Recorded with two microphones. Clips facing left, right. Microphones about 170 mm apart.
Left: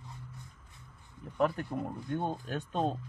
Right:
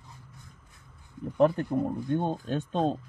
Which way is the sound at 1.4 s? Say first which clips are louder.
Right 7 dB; 25° right (ahead or behind).